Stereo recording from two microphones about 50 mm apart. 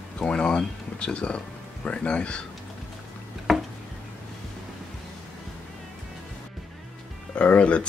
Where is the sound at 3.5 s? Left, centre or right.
Centre.